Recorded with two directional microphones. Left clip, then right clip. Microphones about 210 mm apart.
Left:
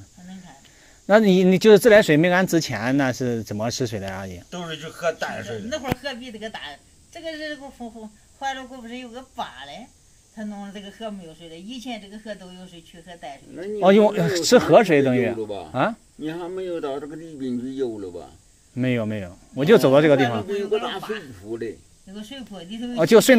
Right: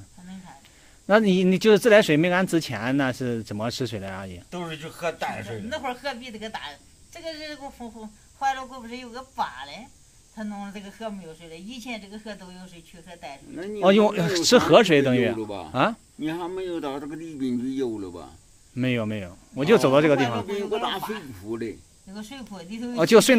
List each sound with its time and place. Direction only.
1.0 s speech: 10° left (ahead or behind)
4.5 s speech: 40° right (ahead or behind)
13.7 s speech: 10° left (ahead or behind)
16.2 s a man's voice: 50° right (ahead or behind)
18.8 s speech: 10° left (ahead or behind)
22.1 s speech: 25° right (ahead or behind)
22.9 s speech: 10° left (ahead or behind)